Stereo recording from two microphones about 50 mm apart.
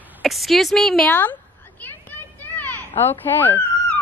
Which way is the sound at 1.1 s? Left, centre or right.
Left.